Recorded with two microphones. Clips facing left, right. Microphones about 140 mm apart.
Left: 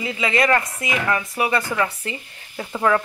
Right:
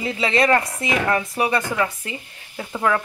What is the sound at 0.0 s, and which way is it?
Speech, 30° right (ahead or behind).